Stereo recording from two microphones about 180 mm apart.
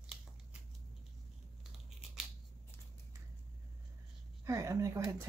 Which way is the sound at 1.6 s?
Centre (ahead or behind).